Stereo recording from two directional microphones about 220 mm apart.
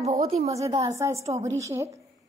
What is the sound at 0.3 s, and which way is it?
Speech, 30° right (ahead or behind).